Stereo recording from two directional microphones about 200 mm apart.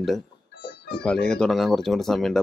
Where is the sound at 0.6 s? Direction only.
55° left (ahead or behind).